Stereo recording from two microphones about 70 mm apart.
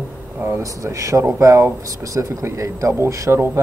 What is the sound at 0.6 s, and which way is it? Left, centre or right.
Speech, right.